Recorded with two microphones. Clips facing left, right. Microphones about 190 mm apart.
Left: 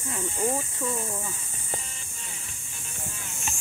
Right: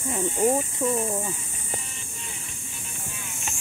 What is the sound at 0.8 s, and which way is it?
Speech, 25° right (ahead or behind).